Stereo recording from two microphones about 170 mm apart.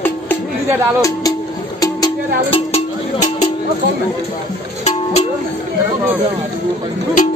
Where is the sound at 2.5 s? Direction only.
40° left (ahead or behind).